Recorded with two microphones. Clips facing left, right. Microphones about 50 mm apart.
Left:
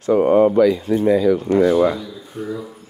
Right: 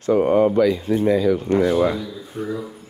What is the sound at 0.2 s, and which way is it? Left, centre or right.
Speech, left.